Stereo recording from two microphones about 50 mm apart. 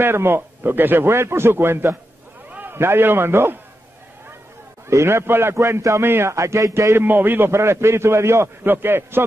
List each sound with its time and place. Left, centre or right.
0.0 s a man's voice: right
4.8 s a man's voice: right
5.6 s a man's voice: right
6.0 s a man's voice: right
6.3 s speech: right
7.1 s a man's voice: right
7.5 s a man's voice: right
8.6 s a man's voice: right